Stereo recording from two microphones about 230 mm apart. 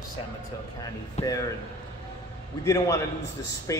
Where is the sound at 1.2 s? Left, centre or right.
Centre.